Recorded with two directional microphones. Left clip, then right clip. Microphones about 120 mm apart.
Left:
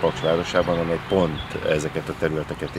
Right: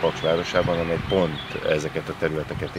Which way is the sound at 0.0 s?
10° left (ahead or behind).